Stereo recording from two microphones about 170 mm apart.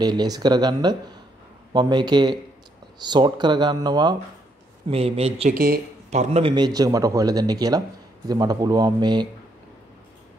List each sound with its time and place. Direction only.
0.0 s speech: 25° right (ahead or behind)
4.8 s speech: 35° right (ahead or behind)
5.5 s speech: 60° right (ahead or behind)
6.0 s a man's voice: 40° right (ahead or behind)
6.5 s speech: 25° right (ahead or behind)